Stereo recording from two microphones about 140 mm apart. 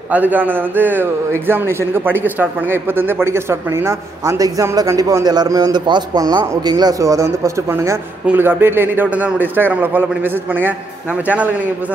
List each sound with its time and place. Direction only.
0.1 s a man's voice: 10° right (ahead or behind)